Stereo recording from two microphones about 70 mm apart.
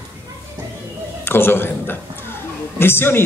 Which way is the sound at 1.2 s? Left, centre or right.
Left.